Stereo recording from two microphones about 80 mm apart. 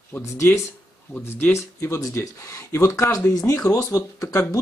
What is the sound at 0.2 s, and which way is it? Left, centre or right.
Speech, left.